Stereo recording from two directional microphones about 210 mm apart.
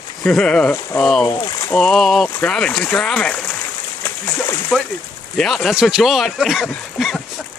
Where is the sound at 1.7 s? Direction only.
Centre (ahead or behind).